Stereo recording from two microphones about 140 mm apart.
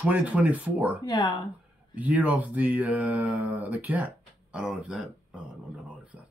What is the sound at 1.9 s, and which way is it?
Speech, 10° right (ahead or behind).